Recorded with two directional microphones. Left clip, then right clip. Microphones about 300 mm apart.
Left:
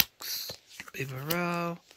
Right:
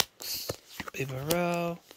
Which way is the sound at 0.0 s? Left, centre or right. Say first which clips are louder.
Left 1 dB; centre.